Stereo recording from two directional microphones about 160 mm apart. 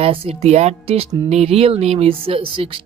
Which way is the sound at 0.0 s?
40° right (ahead or behind).